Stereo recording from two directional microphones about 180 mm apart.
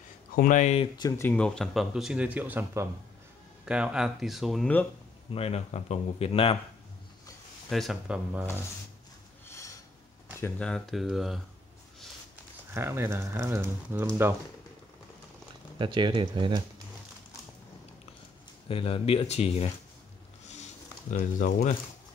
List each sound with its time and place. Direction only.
0.4 s speech: 45° left (ahead or behind)
0.9 s speech: 20° left (ahead or behind)
5.3 s speech: 35° left (ahead or behind)
7.7 s speech: centre (ahead or behind)
9.5 s a sound: 15° left (ahead or behind)
10.4 s speech: 5° left (ahead or behind)
12.7 s speech: 15° right (ahead or behind)
15.8 s speech: 25° right (ahead or behind)
18.7 s speech: 30° left (ahead or behind)
21.1 s speech: 45° left (ahead or behind)